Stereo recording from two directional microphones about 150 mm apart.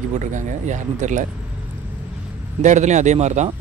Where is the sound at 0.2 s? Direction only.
55° right (ahead or behind).